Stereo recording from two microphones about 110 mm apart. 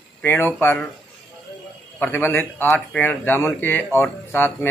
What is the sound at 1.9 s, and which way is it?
A man's voice, 15° left (ahead or behind).